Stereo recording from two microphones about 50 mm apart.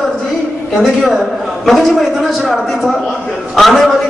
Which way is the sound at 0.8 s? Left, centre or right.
Centre.